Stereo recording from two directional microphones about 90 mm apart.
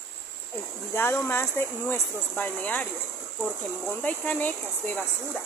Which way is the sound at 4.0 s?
15° left (ahead or behind).